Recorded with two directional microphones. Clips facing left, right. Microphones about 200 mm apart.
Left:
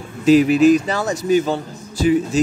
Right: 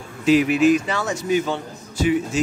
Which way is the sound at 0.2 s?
40° left (ahead or behind).